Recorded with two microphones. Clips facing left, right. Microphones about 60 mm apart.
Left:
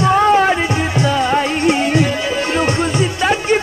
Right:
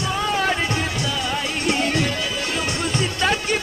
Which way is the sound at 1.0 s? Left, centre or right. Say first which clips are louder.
Left 9 dB; left.